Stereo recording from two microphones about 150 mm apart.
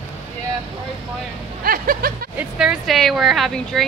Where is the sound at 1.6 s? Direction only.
75° right (ahead or behind).